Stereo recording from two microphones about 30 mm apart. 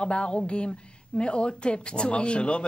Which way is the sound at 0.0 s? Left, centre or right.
Left.